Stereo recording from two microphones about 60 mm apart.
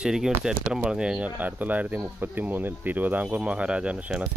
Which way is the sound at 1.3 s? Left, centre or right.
Right.